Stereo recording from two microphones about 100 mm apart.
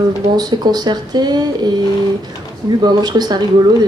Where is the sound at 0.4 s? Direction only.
40° right (ahead or behind).